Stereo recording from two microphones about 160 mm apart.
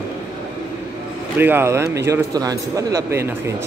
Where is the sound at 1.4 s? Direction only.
15° right (ahead or behind).